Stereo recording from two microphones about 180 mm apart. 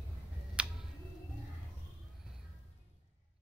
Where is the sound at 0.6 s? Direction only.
5° right (ahead or behind).